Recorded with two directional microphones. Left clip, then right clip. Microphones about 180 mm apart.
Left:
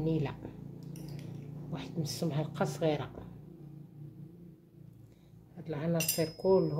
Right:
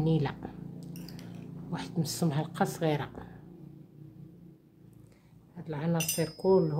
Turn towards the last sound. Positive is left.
turn(degrees=-20)  # may be behind; listen again after turning